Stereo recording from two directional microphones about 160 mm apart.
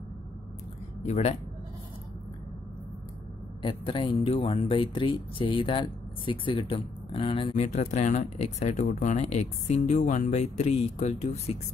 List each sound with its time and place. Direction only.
1.0 s speech: 45° left (ahead or behind)
3.6 s speech: 30° left (ahead or behind)